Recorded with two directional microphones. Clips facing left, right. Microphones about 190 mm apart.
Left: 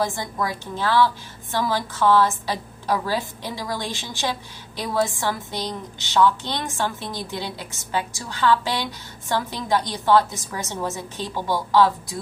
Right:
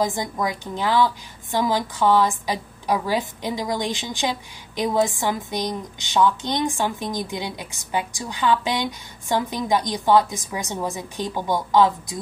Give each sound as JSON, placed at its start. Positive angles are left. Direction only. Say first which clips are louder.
{"t": 0.0, "sound": "a woman's voice", "louder": "right 2 dB", "side_deg": -15}